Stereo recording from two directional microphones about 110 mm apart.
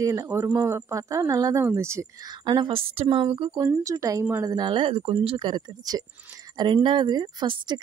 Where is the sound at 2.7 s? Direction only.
55° right (ahead or behind).